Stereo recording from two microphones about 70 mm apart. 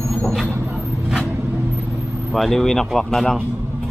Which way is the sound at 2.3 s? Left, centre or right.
Centre.